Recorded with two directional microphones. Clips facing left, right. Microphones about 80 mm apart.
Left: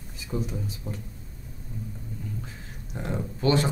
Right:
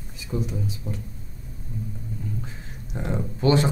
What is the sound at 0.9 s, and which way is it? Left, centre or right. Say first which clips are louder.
Speech: right 3 dB; centre.